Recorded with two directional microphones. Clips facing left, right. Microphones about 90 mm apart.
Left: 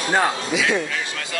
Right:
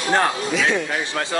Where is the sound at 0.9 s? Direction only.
30° right (ahead or behind).